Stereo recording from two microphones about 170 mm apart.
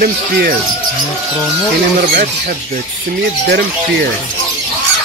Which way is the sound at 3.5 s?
75° right (ahead or behind).